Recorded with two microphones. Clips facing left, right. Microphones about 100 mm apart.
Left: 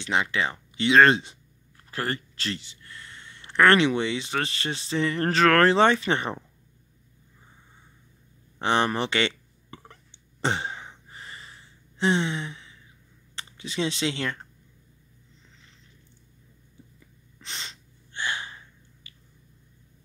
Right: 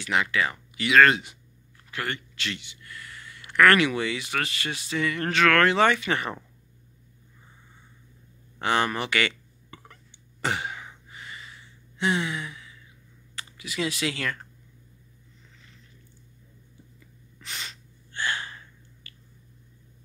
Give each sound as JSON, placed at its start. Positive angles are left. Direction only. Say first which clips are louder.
{"t": 0.0, "sound": "speech", "louder": "even", "side_deg": 25}
{"t": 8.5, "sound": "a sound", "louder": "left 1 dB", "side_deg": 25}
{"t": 13.4, "sound": "speech", "louder": "left 1 dB", "side_deg": 30}
{"t": 17.4, "sound": "gasp", "louder": "right 1 dB", "side_deg": 25}